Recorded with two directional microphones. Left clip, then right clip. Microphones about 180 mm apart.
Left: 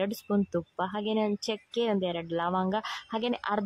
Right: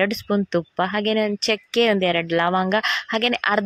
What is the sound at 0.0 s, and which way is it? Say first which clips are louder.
Speech: right 9 dB; 15° right (ahead or behind).